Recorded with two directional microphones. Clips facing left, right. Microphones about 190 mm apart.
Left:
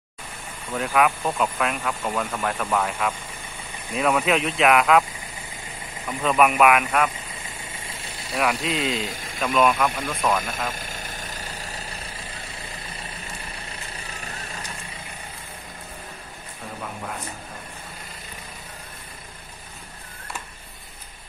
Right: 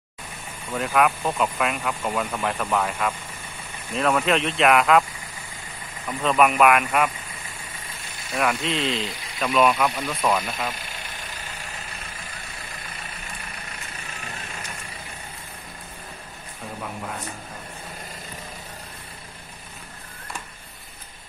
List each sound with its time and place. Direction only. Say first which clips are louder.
0.7 s speech: even; centre (ahead or behind)
6.0 s speech: even; centre (ahead or behind)
8.3 s speech: even; centre (ahead or behind)
8.9 s speech: left 1 dB; 45° left (ahead or behind)
9.5 s speech: even; 10° right (ahead or behind)
10.7 s vehicle: left 2 dB; 45° left (ahead or behind)